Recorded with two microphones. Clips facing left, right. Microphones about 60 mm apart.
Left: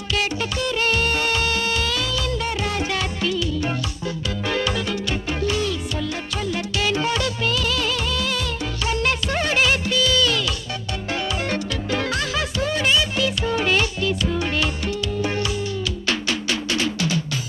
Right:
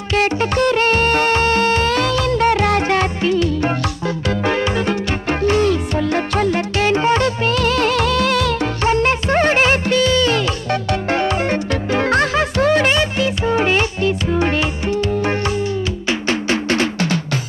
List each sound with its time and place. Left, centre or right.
0.1 s music: right
4.5 s music: right
5.4 s music: right
8.8 s music: right
10.7 s music: right
11.4 s music: right
13.2 s music: right
16.3 s drum: right